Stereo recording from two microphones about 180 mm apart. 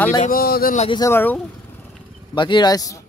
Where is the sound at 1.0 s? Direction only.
10° left (ahead or behind).